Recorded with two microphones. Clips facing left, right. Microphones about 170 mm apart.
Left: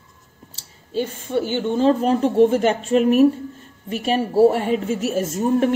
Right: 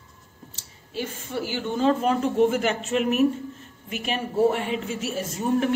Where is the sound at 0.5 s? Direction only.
30° left (ahead or behind).